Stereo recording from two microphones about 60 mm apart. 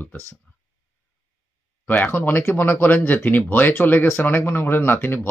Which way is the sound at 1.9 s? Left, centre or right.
Left.